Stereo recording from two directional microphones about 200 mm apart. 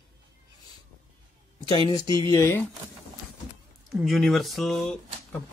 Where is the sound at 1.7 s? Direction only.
20° left (ahead or behind).